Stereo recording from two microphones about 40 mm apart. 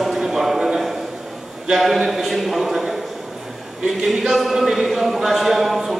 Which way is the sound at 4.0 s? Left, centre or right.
Centre.